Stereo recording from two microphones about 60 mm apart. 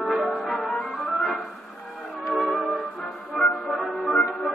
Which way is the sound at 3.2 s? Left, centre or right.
Centre.